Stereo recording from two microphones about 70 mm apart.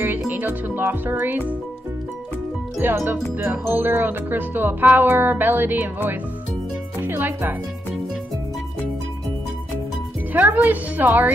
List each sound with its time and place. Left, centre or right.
0.0 s speech: right
2.8 s speech: right
10.3 s speech: right